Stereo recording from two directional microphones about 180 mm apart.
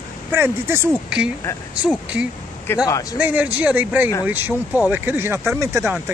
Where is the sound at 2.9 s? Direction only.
20° left (ahead or behind).